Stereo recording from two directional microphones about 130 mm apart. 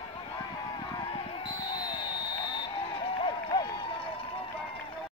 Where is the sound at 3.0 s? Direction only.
45° left (ahead or behind).